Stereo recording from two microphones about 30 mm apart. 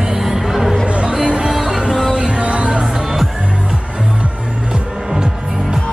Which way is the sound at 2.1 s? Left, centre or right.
Right.